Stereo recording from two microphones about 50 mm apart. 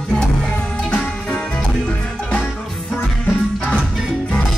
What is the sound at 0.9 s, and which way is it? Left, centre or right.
Music, left.